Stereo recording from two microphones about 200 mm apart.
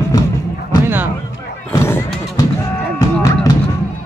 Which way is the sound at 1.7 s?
15° left (ahead or behind).